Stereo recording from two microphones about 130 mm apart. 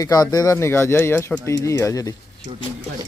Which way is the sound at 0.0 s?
30° left (ahead or behind).